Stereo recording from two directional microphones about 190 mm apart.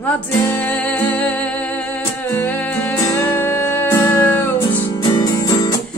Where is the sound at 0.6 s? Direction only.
10° left (ahead or behind).